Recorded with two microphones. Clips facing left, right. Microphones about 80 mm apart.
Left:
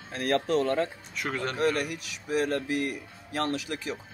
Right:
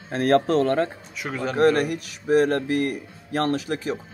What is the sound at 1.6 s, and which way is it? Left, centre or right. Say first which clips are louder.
Speech: right 9 dB; right.